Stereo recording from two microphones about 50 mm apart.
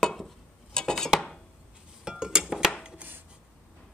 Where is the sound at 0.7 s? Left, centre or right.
Centre.